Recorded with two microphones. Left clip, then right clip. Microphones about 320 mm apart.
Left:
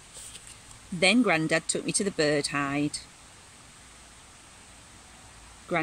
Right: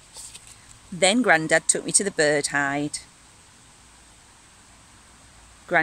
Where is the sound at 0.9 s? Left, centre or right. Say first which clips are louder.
Right 4 dB; right.